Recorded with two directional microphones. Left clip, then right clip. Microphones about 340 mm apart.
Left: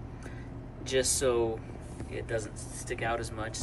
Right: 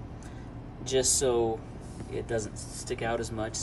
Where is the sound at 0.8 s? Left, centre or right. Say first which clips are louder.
Right 1 dB; centre.